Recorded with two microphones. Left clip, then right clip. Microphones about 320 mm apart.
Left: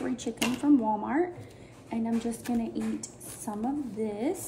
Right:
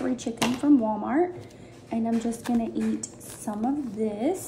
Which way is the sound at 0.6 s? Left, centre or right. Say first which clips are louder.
Right 2 dB; centre.